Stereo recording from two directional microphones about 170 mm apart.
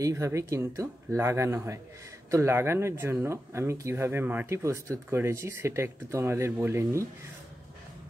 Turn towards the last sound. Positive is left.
turn(degrees=-15)  # may be behind; listen again after turning